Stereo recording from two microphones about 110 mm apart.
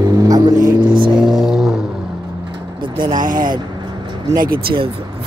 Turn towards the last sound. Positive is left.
turn(degrees=-50)  # may be behind; listen again after turning